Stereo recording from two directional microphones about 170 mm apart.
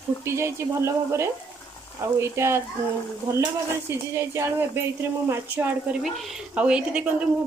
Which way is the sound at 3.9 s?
15° right (ahead or behind).